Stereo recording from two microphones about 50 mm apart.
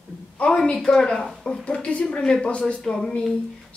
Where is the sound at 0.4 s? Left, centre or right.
Left.